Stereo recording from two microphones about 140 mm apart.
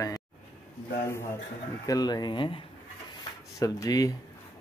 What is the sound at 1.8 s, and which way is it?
Speech, 25° left (ahead or behind).